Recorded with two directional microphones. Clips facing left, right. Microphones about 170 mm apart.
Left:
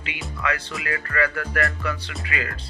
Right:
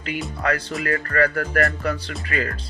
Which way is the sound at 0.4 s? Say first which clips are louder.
Right 3 dB; 40° right (ahead or behind).